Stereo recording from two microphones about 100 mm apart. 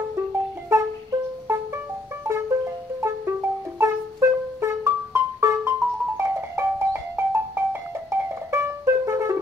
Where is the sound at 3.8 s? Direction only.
30° right (ahead or behind).